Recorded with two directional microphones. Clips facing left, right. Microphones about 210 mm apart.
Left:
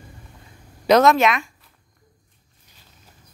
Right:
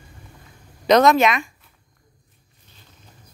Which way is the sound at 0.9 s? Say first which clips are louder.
Even; centre (ahead or behind).